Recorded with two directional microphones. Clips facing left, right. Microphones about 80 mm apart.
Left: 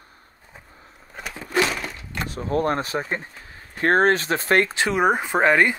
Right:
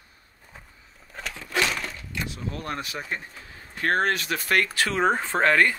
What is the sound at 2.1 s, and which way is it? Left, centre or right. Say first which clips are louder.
Speech: left 10 dB; left.